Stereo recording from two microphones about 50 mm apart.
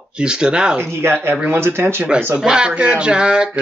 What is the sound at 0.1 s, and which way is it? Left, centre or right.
Speech, centre.